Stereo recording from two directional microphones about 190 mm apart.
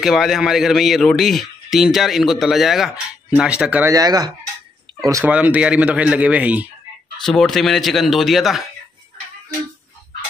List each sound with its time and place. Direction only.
0.0 s speech: centre (ahead or behind)
3.9 s speech: 20° right (ahead or behind); by 8.6 s centre (ahead or behind)